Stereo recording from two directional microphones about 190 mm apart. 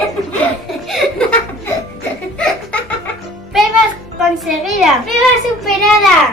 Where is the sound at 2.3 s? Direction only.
5° left (ahead or behind).